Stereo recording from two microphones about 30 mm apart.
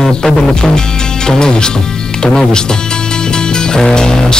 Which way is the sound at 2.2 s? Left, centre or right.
Left.